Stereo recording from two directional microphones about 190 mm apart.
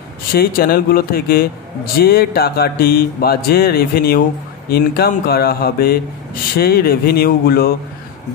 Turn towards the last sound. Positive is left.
turn(degrees=50)  # may be behind; listen again after turning